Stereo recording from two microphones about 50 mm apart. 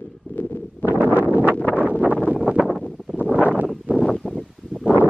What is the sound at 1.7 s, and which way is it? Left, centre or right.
Wind noise, right.